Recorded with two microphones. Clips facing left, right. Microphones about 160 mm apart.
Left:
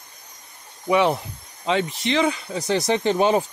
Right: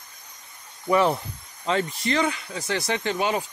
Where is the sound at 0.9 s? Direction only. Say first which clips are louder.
Left 2 dB; centre (ahead or behind).